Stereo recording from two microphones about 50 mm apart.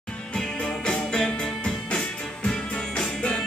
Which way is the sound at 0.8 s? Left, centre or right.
Left.